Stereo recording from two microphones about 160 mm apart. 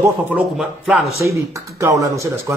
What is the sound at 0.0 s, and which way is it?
A man's voice, 5° right (ahead or behind).